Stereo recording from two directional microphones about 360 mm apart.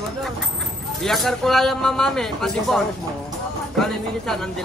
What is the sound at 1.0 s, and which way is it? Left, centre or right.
Speech, centre.